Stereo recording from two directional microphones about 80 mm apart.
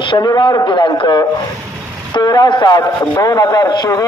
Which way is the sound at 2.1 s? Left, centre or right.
Left.